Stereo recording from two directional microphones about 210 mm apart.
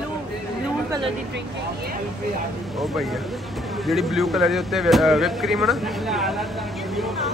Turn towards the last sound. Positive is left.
turn(degrees=0)  # may be behind; listen again after turning